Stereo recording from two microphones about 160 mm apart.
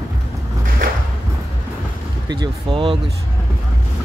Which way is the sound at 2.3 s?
30° right (ahead or behind).